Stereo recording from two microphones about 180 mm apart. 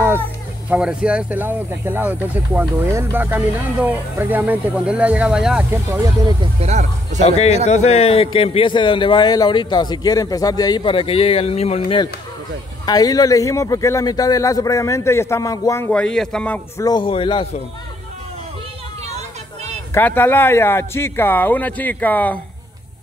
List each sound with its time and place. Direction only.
0.7 s speech: 5° right (ahead or behind)
5.7 s speech: 15° right (ahead or behind)
6.6 s speech: 40° right (ahead or behind)
7.2 s a man's voice: 35° left (ahead or behind)
12.8 s a man's voice: 20° left (ahead or behind)
15.9 s speech: 5° left (ahead or behind)
16.8 s a man's voice: 25° left (ahead or behind)
19.9 s a man's voice: 10° left (ahead or behind)